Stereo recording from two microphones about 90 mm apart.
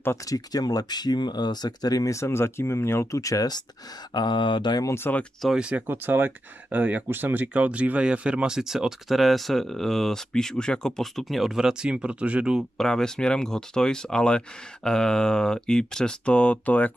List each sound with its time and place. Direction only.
0.3 s speech: 45° left (ahead or behind)
4.1 s speech: 55° left (ahead or behind)
4.8 s speech: 25° left (ahead or behind)
5.6 s speech: 10° right (ahead or behind)
12.7 s speech: 5° left (ahead or behind)